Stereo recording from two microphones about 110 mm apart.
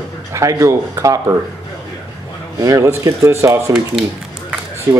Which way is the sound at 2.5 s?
30° right (ahead or behind).